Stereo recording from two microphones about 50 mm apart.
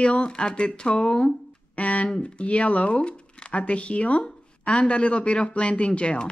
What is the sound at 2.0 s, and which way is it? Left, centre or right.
Speech, centre.